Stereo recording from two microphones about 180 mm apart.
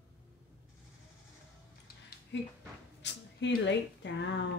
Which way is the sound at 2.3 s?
80° left.